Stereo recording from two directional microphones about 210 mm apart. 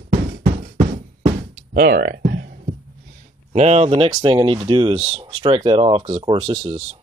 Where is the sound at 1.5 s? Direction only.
50° right (ahead or behind).